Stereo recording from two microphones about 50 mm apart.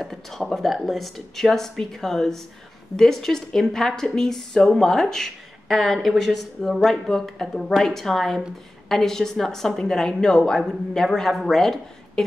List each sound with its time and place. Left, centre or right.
0.0 s a woman's voice: centre